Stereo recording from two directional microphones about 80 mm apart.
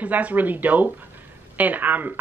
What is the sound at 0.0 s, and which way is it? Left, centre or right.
Speech, centre.